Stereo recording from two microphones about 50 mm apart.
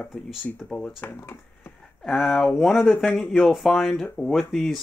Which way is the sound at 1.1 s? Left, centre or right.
Left.